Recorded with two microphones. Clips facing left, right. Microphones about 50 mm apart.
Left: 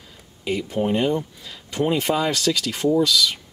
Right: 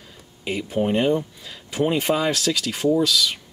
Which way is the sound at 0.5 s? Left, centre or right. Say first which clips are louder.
Even; centre.